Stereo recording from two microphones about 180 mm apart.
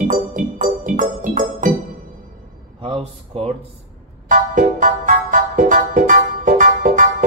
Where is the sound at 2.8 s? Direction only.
35° right (ahead or behind).